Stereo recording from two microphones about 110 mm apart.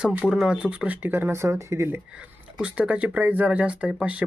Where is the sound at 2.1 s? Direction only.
10° right (ahead or behind).